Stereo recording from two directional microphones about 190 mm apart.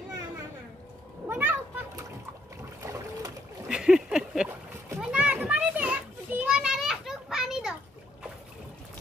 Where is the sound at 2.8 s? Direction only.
15° right (ahead or behind).